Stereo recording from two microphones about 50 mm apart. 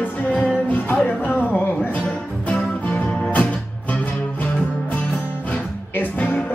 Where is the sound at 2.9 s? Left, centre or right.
Left.